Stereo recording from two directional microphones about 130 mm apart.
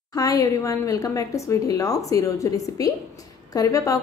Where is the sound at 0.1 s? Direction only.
25° left (ahead or behind).